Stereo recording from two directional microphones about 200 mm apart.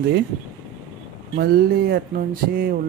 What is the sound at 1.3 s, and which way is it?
Speech, 50° right (ahead or behind).